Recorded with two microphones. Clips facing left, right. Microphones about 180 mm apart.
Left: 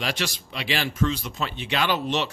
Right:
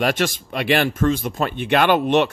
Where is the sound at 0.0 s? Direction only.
50° right (ahead or behind).